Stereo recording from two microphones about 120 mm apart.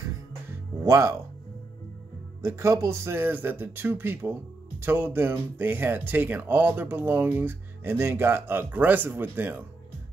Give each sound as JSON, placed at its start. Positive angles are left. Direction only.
{"t": 0.8, "sound": "speech", "side_deg": -25}
{"t": 2.4, "sound": "speech", "side_deg": -25}